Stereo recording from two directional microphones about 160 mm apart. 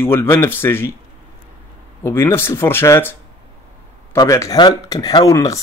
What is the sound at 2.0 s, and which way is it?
Speech, 15° left (ahead or behind).